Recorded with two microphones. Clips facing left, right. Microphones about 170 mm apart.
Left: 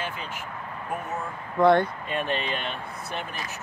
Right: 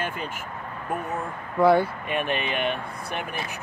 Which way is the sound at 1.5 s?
5° right (ahead or behind).